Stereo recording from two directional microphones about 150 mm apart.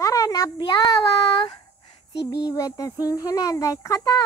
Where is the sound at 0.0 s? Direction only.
20° left (ahead or behind).